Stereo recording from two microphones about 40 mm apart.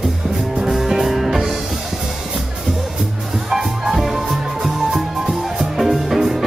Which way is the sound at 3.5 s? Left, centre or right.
Centre.